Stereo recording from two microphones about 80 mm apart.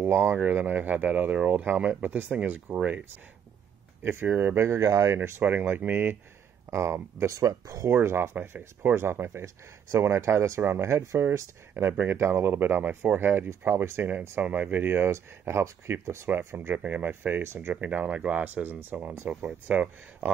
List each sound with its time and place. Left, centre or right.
0.0 s speech: right
4.0 s speech: right
5.4 s speech: right
6.7 s speech: right
14.4 s speech: centre